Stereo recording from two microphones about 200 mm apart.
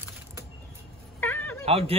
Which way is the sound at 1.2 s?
10° left (ahead or behind).